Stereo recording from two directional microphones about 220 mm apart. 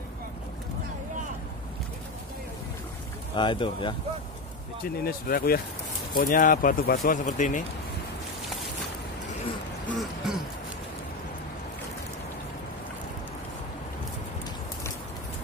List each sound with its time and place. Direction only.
3.3 s speech: 20° left (ahead or behind)
4.8 s speech: 45° left (ahead or behind)
9.9 s throat clearing: 5° right (ahead or behind)